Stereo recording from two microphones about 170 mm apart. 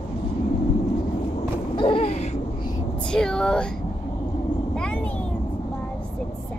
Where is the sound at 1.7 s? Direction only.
30° left (ahead or behind).